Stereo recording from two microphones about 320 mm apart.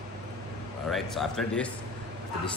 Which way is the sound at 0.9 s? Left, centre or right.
Centre.